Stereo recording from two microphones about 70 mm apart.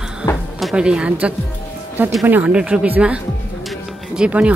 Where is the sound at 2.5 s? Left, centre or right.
Centre.